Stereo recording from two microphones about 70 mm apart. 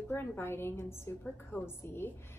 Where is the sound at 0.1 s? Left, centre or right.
Left.